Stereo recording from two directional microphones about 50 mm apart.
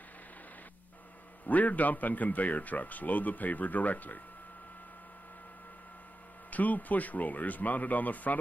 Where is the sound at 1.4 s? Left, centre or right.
Left.